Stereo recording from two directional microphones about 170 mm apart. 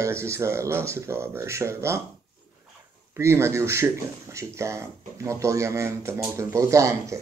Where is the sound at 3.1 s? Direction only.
15° right (ahead or behind).